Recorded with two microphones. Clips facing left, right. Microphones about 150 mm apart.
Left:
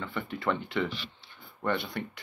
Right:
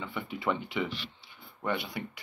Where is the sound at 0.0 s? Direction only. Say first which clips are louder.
Left 1 dB; 5° right (ahead or behind).